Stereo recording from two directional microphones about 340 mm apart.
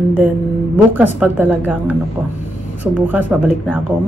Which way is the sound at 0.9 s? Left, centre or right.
Centre.